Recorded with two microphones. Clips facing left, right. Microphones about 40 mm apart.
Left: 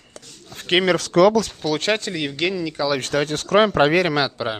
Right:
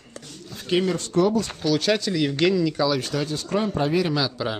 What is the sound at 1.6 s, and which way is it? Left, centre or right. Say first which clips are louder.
Speech: even; left.